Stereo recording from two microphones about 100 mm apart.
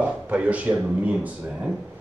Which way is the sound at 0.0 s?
15° right (ahead or behind).